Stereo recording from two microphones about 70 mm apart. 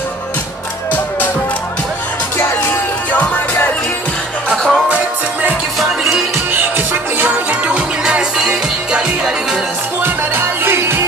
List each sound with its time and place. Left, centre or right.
3.1 s music: left
4.5 s music: centre
4.8 s music: right
5.8 s music: centre
6.3 s music: right
7.6 s music: centre
10.0 s music: right